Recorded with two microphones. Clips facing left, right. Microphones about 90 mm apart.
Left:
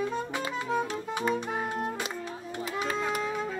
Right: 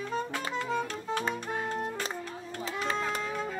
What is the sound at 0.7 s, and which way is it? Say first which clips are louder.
Music: left 3 dB; 10° left (ahead or behind).